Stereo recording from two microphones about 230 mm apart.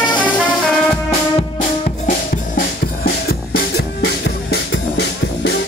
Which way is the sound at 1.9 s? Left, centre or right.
Left.